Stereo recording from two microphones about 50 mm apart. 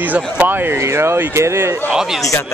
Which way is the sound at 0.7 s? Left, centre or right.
Right.